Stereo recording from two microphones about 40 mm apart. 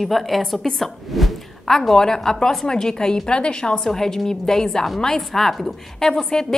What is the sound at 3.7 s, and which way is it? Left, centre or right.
A woman's voice, centre.